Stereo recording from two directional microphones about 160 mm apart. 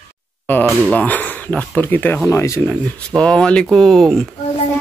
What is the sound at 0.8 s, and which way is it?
Speech, 10° left (ahead or behind).